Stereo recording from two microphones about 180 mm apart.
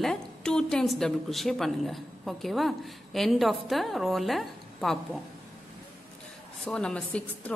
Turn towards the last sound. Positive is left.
turn(degrees=5)  # may be behind; listen again after turning